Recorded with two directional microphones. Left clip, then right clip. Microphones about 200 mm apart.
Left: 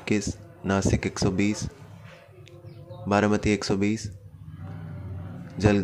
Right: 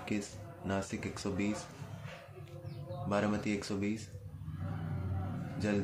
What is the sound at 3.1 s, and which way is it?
Speech, 45° left (ahead or behind).